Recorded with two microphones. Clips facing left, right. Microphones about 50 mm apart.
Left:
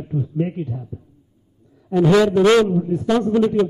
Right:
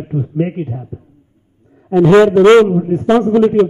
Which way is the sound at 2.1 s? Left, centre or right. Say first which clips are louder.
Right 7 dB; right.